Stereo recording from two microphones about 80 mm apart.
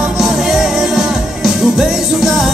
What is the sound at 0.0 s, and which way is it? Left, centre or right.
Music, centre.